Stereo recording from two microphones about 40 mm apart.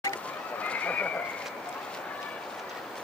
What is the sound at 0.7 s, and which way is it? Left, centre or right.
Horse, left.